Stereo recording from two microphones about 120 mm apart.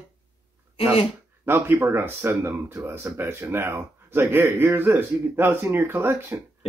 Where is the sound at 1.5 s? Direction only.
20° right (ahead or behind).